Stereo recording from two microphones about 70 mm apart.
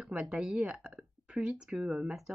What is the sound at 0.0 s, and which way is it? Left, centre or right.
Speech, centre.